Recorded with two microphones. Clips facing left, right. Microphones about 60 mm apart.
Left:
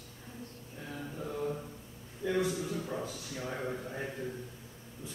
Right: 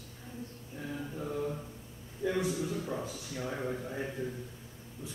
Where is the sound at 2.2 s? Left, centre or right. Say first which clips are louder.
Even; centre.